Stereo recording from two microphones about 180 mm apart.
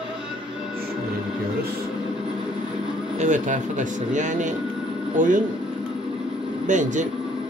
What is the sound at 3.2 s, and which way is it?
Speech, 45° right (ahead or behind).